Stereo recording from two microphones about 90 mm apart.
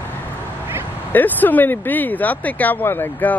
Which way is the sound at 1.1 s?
20° left (ahead or behind).